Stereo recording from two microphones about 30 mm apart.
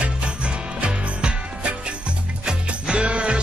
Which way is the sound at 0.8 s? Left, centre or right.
Right.